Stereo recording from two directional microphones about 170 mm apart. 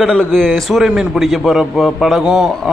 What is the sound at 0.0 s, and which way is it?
A man's voice, 5° left (ahead or behind).